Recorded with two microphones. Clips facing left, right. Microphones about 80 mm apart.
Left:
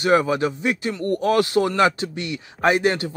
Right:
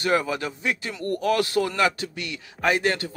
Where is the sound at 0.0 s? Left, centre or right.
Left.